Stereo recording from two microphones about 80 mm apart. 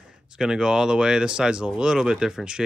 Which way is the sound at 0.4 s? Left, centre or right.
Centre.